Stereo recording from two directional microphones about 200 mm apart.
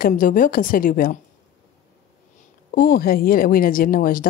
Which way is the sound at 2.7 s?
45° left (ahead or behind).